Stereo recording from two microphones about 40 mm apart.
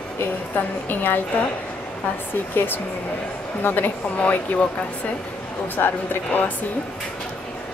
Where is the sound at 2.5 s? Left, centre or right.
Left.